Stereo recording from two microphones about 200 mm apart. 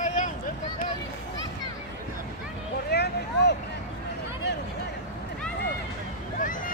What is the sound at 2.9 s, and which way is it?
Vehicle, 55° left (ahead or behind).